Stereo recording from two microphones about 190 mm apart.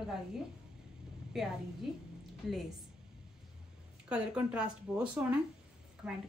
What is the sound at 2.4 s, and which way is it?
Speech, centre (ahead or behind).